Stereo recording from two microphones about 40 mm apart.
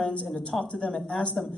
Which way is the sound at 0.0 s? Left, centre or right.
Left.